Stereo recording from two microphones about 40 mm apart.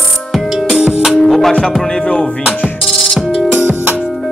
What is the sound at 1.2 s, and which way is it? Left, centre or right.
Music, centre.